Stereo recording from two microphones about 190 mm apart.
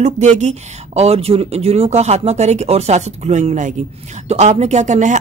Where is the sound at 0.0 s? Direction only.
35° right (ahead or behind).